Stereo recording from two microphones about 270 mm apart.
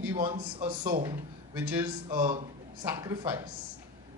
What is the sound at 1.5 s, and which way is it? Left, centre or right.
A man's voice, centre.